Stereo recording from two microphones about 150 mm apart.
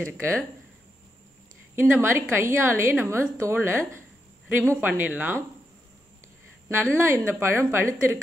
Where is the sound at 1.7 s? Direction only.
15° right (ahead or behind).